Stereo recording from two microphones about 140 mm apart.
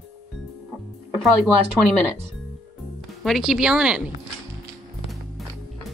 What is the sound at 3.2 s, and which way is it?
Speech, centre (ahead or behind).